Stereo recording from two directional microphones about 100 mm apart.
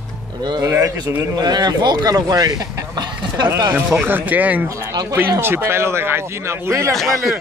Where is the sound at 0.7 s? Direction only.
35° right (ahead or behind).